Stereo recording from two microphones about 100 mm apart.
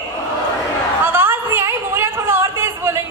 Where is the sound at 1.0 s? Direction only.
25° right (ahead or behind).